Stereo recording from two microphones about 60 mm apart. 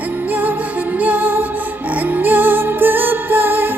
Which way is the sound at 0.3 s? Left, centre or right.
Right.